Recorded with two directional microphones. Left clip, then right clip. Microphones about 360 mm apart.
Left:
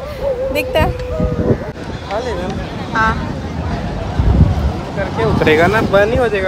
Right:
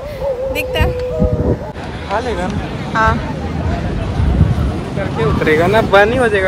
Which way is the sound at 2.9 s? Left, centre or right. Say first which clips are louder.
Right 1 dB; centre.